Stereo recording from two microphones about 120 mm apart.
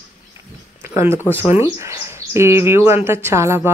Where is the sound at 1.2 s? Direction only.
20° left (ahead or behind).